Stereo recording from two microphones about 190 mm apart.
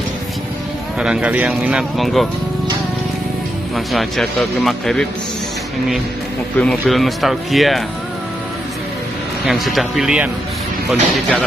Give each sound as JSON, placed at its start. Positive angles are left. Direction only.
{"t": 0.9, "sound": "speech", "side_deg": -5}
{"t": 3.7, "sound": "speech", "side_deg": 0}
{"t": 6.6, "sound": "speech", "side_deg": 0}
{"t": 9.5, "sound": "speech", "side_deg": 0}